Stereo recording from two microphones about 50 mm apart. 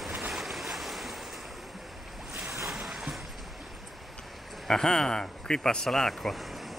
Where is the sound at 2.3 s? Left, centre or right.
Right.